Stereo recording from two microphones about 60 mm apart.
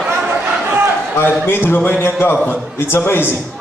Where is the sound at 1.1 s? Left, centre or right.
Left.